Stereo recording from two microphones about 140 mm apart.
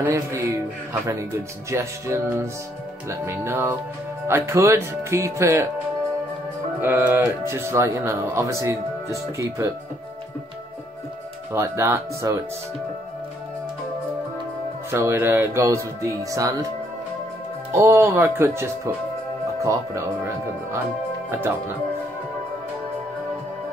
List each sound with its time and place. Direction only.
0.0 s speech: 20° right (ahead or behind)
1.7 s speech: 20° right (ahead or behind)
6.8 s speech: 15° right (ahead or behind)
11.5 s speech: 20° right (ahead or behind)
14.9 s speech: 20° right (ahead or behind)
17.7 s speech: 20° right (ahead or behind)
21.3 s speech: 15° right (ahead or behind)